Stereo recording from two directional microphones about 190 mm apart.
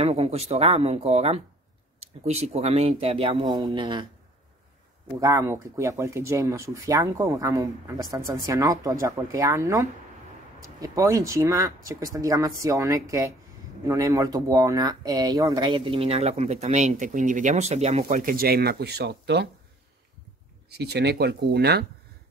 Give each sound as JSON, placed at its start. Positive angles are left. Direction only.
{"t": 0.0, "sound": "speech", "side_deg": -35}
{"t": 5.2, "sound": "speech", "side_deg": -15}
{"t": 20.7, "sound": "speech", "side_deg": -60}